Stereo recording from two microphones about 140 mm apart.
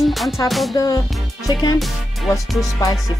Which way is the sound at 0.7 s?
25° left (ahead or behind).